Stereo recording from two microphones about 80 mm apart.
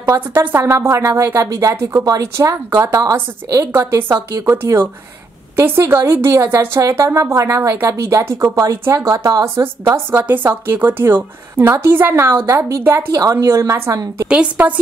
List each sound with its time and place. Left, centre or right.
0.3 s a woman's voice: right
9.9 s a woman's voice: right
13.1 s a woman's voice: right
14.2 s a woman's voice: centre